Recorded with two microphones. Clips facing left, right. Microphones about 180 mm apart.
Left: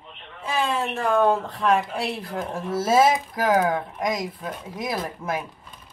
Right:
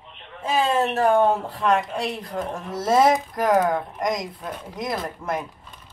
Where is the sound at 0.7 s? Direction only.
45° right (ahead or behind).